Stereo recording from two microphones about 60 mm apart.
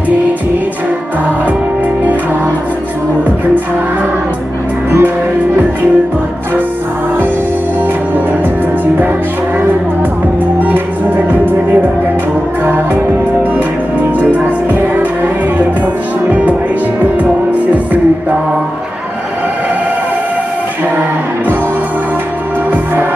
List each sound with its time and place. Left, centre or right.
10.6 s music: right
14.3 s music: right